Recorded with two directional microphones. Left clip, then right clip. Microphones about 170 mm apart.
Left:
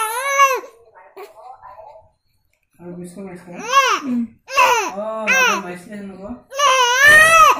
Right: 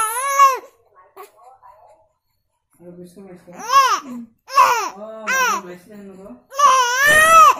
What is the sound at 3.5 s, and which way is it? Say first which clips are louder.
Babbling: right 1 dB; 25° right (ahead or behind).